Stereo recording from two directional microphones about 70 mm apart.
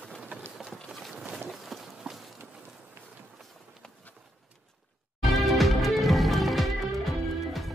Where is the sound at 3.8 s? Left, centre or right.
Centre.